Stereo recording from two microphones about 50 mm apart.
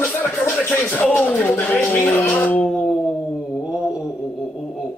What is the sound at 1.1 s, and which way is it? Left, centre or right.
Speech, left.